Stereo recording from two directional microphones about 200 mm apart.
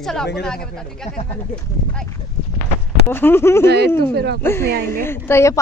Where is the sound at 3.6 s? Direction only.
55° right (ahead or behind).